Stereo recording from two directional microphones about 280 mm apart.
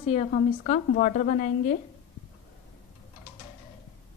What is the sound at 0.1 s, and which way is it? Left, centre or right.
A woman's voice, left.